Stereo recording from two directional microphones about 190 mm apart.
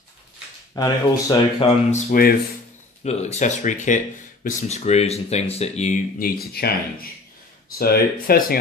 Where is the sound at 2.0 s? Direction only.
50° left (ahead or behind).